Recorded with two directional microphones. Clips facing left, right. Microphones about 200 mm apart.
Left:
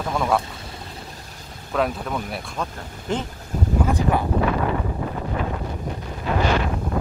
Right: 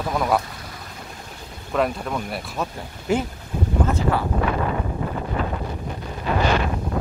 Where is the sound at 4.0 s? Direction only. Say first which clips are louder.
Left 1 dB; 15° left (ahead or behind).